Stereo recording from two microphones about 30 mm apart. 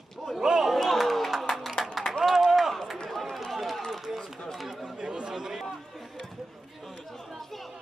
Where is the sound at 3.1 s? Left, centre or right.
Centre.